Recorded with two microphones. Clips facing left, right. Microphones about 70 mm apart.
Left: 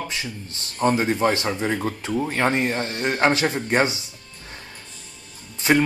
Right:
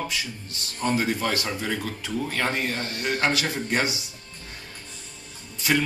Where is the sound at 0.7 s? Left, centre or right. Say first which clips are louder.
Left 5 dB; left.